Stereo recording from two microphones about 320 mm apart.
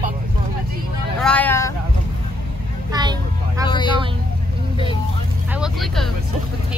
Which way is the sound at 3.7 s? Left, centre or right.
Centre.